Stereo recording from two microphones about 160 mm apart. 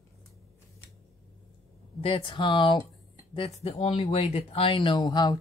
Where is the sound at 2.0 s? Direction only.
35° left (ahead or behind).